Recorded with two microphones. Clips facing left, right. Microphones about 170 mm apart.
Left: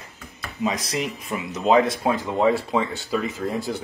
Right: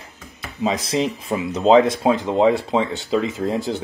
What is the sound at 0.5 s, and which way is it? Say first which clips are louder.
Speech: right 5 dB; 20° right (ahead or behind).